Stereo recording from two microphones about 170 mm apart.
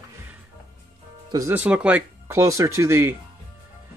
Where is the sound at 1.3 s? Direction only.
15° right (ahead or behind).